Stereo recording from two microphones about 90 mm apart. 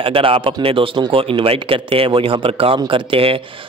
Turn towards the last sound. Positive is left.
turn(degrees=-80)